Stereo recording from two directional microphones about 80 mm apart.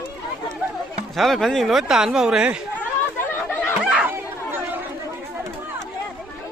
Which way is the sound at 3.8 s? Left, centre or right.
Centre.